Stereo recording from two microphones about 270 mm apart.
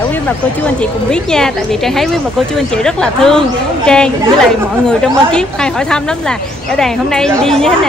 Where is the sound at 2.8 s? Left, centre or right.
Centre.